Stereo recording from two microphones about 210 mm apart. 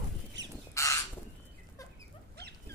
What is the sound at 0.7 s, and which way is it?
Crow, 15° left (ahead or behind).